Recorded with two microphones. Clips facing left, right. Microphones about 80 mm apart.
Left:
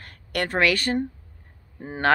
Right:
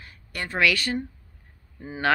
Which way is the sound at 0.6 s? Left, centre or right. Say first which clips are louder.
Left 1 dB; left.